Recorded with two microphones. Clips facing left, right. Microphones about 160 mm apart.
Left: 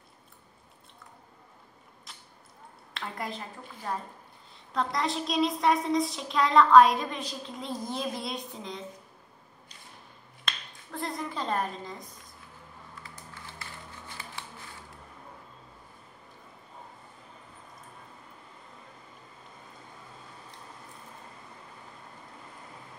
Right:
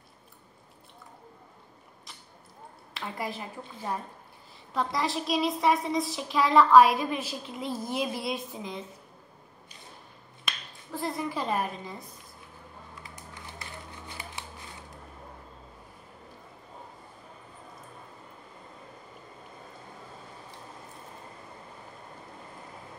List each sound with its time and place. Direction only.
2.9 s a woman's voice: 5° right (ahead or behind)
4.7 s a woman's voice: centre (ahead or behind)
10.4 s finger snapping: 5° right (ahead or behind)
13.0 s a sound: 15° right (ahead or behind)